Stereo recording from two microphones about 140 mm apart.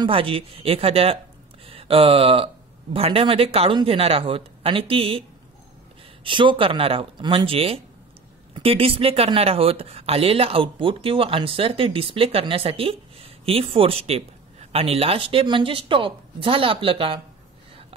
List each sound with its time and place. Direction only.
0.0 s speech: 40° right (ahead or behind)
6.2 s speech: 35° right (ahead or behind)